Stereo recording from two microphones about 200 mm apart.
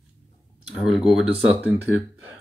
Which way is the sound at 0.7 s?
Centre (ahead or behind).